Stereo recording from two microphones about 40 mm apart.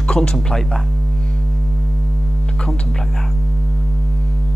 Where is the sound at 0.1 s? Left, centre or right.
Centre.